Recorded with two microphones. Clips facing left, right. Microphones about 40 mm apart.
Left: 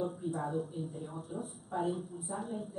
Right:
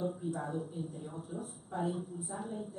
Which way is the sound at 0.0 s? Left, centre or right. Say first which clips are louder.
Left 1 dB; centre.